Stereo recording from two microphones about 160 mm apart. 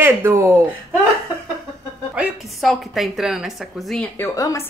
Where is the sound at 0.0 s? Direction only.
15° right (ahead or behind).